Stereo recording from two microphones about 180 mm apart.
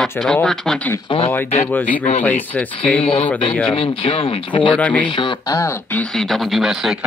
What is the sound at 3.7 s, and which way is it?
Speech, 30° left (ahead or behind).